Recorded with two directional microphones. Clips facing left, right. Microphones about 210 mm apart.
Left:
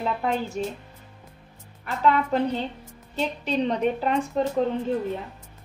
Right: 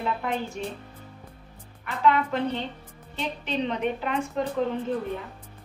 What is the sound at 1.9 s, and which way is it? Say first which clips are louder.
A woman's voice: left 1 dB; 40° left (ahead or behind).